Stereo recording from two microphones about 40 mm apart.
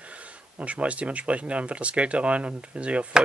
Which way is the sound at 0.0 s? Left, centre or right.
Right.